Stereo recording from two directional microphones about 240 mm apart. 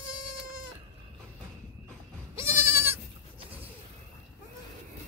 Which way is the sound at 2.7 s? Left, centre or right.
Centre.